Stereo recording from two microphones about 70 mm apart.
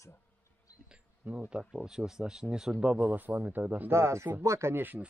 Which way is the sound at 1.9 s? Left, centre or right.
Centre.